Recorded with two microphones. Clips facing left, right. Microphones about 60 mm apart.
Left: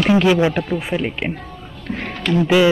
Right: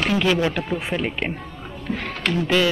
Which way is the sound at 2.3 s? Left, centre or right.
Centre.